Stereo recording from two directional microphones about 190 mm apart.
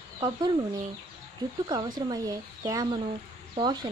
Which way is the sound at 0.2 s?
25° right (ahead or behind).